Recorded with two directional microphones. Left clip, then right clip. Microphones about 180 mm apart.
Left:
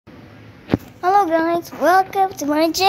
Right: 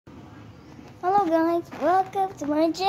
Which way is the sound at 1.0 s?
5° left (ahead or behind).